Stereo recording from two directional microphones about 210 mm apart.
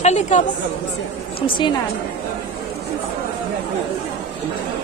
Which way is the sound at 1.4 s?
25° left (ahead or behind).